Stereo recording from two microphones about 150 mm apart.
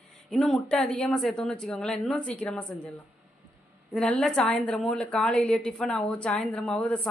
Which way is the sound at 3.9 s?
5° left (ahead or behind).